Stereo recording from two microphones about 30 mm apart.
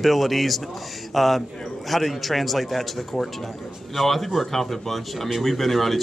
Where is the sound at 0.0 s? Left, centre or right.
Centre.